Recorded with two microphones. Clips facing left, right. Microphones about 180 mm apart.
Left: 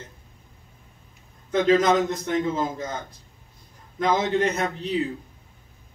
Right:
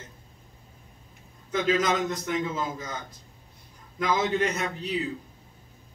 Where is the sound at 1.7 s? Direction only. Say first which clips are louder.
Left 6 dB; 30° left (ahead or behind).